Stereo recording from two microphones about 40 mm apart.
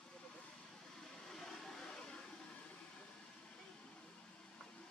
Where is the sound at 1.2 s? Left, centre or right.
Centre.